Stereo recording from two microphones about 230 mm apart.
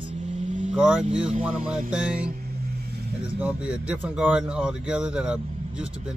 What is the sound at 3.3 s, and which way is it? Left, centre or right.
Speech, centre.